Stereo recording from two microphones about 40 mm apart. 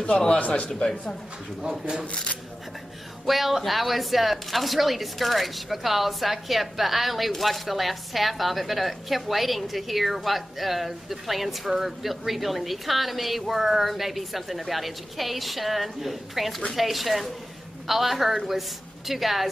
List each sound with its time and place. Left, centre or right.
0.3 s a man's voice: left
1.6 s speech: right
3.3 s speech: centre